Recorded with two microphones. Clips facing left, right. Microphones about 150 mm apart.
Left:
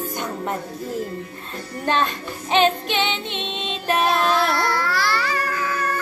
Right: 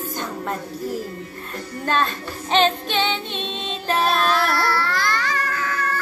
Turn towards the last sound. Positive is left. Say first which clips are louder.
# left 1 dB
turn(degrees=10)  # may be behind; listen again after turning